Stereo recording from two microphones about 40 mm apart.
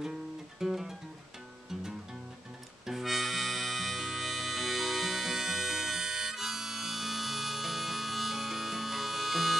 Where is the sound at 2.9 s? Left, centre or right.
Centre.